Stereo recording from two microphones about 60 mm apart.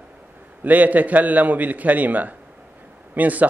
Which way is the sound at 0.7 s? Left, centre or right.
Right.